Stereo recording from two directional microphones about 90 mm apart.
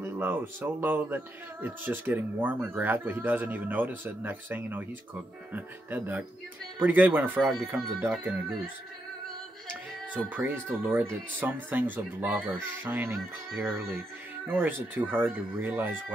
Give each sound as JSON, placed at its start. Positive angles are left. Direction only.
{"t": 0.0, "sound": "speech", "side_deg": -25}
{"t": 10.3, "sound": "speech", "side_deg": -25}